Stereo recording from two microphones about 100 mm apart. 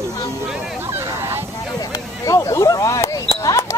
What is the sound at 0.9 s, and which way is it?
Vehicle, 25° right (ahead or behind).